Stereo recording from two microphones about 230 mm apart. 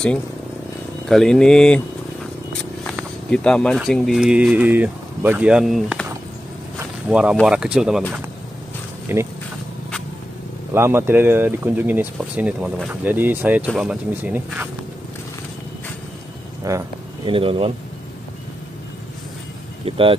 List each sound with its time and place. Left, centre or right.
1.0 s speech: centre
2.8 s speech: centre
6.8 s a sound: centre
7.3 s speech: centre
9.1 s speech: centre
10.7 s speech: centre
16.6 s speech: centre
19.8 s speech: right